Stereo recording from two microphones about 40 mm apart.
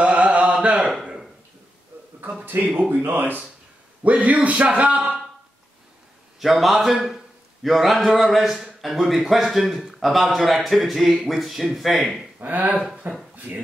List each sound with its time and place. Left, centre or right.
0.0 s a sound: right
2.4 s speech: right
4.0 s speech: right
6.4 s a man's voice: centre
12.4 s speech: right
13.0 s speech: right